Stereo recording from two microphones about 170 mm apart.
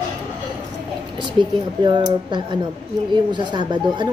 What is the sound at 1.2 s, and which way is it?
Speech, 30° right (ahead or behind).